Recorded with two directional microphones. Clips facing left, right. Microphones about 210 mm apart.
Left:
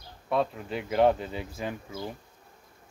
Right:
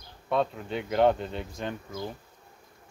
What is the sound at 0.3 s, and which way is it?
Speech, centre (ahead or behind).